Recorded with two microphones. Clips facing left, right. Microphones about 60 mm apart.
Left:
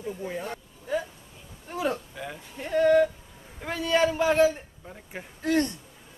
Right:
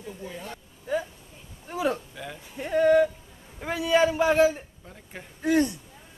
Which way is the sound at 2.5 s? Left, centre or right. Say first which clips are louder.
Right 1 dB; centre.